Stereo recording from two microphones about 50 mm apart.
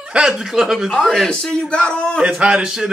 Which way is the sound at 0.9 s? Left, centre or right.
Centre.